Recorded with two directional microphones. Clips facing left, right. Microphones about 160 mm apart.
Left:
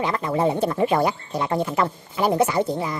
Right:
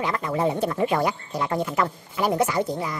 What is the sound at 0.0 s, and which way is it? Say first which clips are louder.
Speech: left 2 dB; 30° left (ahead or behind).